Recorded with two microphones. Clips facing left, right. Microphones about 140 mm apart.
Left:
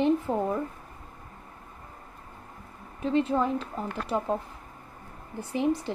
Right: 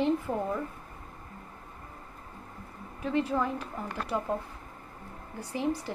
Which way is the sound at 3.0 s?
20° left (ahead or behind).